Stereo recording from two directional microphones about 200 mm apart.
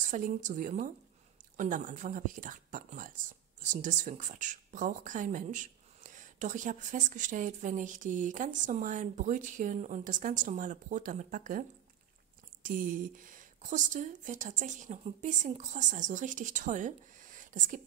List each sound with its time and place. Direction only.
0.1 s speech: 40° right (ahead or behind)
12.6 s speech: 45° right (ahead or behind)